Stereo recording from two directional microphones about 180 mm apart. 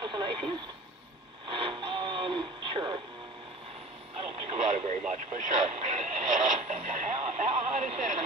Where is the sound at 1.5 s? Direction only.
30° right (ahead or behind).